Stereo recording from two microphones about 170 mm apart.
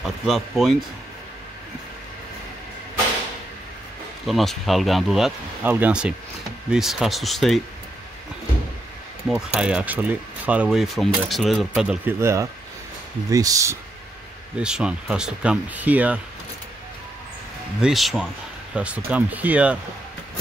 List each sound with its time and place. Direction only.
0.0 s speech: centre (ahead or behind)
4.3 s speech: centre (ahead or behind)
9.5 s speech: 5° right (ahead or behind)
12.2 s speech: 15° right (ahead or behind)
14.6 s speech: 5° right (ahead or behind)
17.8 s speech: centre (ahead or behind)